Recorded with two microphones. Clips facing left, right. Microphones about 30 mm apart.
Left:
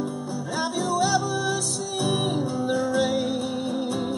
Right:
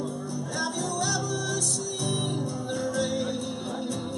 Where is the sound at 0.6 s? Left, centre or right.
Centre.